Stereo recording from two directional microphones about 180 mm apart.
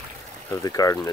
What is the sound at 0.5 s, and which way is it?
Speech, 20° left (ahead or behind).